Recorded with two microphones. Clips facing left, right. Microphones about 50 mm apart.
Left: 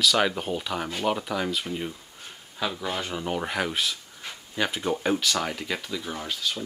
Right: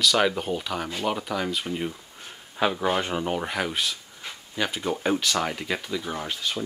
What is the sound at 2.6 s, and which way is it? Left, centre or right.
Speech, right.